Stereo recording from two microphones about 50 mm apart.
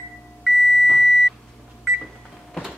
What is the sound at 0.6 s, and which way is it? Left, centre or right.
Beep, centre.